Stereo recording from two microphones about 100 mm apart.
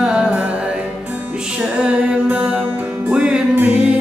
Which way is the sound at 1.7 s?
10° right (ahead or behind).